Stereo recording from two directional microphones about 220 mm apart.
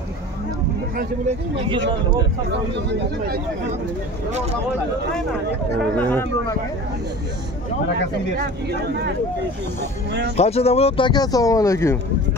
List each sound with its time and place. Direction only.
5.9 s a man's voice: 10° left (ahead or behind)
8.6 s speech: 50° right (ahead or behind)
10.3 s speech: 30° left (ahead or behind); by 12.0 s 15° left (ahead or behind)